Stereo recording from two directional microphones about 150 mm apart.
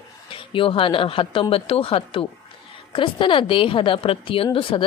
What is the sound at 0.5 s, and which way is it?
A woman's voice, 35° left (ahead or behind).